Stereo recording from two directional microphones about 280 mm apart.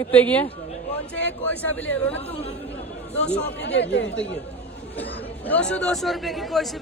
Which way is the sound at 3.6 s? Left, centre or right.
Left.